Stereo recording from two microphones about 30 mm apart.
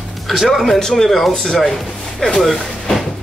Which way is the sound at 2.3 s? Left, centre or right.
Centre.